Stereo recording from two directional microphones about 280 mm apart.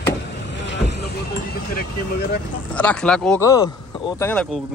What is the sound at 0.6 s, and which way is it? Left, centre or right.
Boat, left.